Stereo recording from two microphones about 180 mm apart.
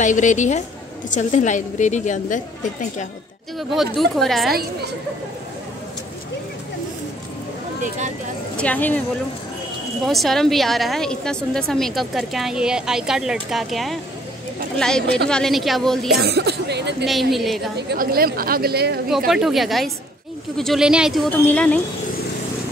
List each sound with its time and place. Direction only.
0.0 s a woman's voice: 45° left (ahead or behind)
3.5 s a woman's voice: centre (ahead or behind)
8.5 s speech: 10° left (ahead or behind)
10.0 s a woman's voice: centre (ahead or behind)
16.1 s speech: 65° right (ahead or behind)
17.0 s a woman's voice: centre (ahead or behind)
17.7 s a woman's voice: 60° right (ahead or behind)
19.0 s a woman's voice: 5° right (ahead or behind)